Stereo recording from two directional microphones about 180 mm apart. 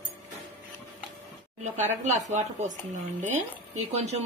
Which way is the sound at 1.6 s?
40° right (ahead or behind).